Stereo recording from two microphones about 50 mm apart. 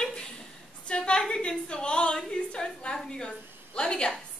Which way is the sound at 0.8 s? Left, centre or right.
Left.